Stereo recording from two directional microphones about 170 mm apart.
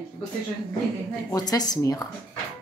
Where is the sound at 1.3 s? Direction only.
20° left (ahead or behind).